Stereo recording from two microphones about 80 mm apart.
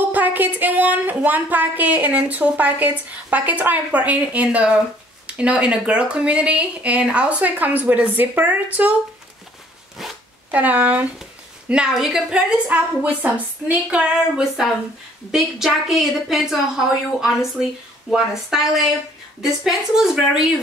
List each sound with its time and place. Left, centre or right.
0.1 s speech: right
10.5 s speech: right
11.7 s a woman's voice: centre